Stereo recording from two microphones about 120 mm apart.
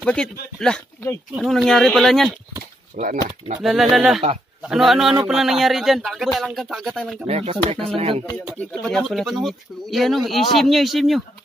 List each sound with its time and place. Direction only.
0.0 s speech: 5° left (ahead or behind)
3.0 s speech: 90° right
3.5 s speech: 5° right (ahead or behind)
7.2 s speech: 55° right (ahead or behind)
8.5 s speech: 5° left (ahead or behind)